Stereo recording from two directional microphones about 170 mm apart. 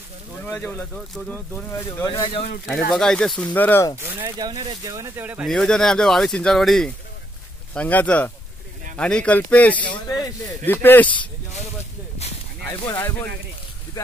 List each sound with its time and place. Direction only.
0.4 s speech: 10° left (ahead or behind)
1.7 s speech: 15° left (ahead or behind)
2.9 s speech: 5° left (ahead or behind)
4.0 s speech: 15° right (ahead or behind)
4.4 s speech: 25° right (ahead or behind)
5.5 s speech: 5° left (ahead or behind)
9.8 s speech: 25° left (ahead or behind)
12.8 s speech: 15° left (ahead or behind)